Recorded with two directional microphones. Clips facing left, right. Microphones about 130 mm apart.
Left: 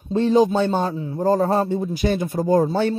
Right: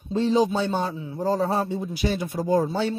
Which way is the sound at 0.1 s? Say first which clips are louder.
Left 4 dB; 55° left (ahead or behind).